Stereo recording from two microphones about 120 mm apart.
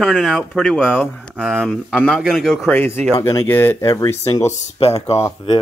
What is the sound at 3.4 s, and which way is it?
Speech, 20° left (ahead or behind).